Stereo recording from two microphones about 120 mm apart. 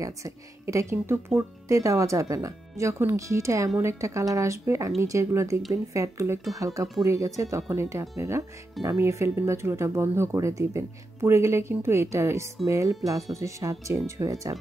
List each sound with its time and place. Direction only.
0.0 s speech: 25° right (ahead or behind)